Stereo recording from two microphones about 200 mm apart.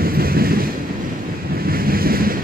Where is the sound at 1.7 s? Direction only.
45° right (ahead or behind).